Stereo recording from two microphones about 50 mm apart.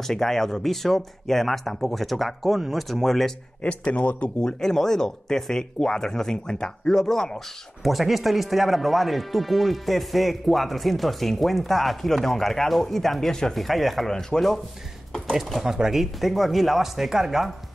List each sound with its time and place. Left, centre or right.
0.0 s speech: centre
3.6 s speech: left
4.4 s speech: centre
15.6 s speech: centre